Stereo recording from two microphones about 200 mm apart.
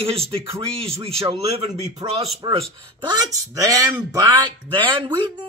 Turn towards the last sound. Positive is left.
turn(degrees=-25)  # may be behind; listen again after turning